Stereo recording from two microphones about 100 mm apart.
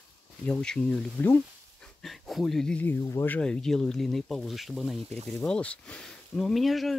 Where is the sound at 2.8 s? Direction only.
25° left (ahead or behind).